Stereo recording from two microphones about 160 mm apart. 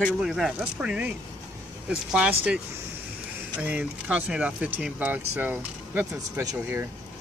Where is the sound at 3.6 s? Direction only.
10° right (ahead or behind).